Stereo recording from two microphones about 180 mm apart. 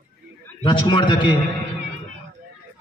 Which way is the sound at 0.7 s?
25° left (ahead or behind).